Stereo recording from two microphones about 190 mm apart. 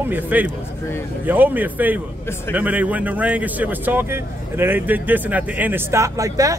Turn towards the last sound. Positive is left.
turn(degrees=-15)  # may be behind; listen again after turning